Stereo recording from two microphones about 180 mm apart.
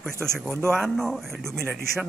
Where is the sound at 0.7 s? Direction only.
Centre (ahead or behind).